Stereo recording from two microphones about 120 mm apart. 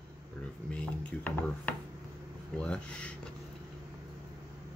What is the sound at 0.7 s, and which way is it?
Speech, 10° left (ahead or behind).